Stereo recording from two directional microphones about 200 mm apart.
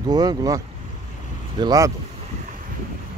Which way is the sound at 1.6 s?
20° right (ahead or behind).